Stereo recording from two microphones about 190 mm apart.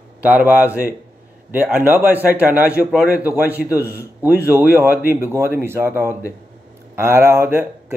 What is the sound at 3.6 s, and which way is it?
Speech, 15° left (ahead or behind).